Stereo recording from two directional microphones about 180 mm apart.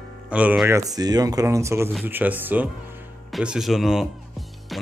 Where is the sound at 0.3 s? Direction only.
5° right (ahead or behind).